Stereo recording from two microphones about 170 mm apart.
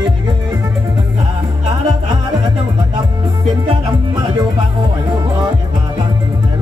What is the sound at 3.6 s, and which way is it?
Music, 25° right (ahead or behind).